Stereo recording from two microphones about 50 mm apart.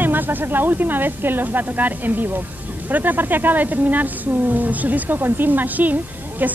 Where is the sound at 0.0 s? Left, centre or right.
Right.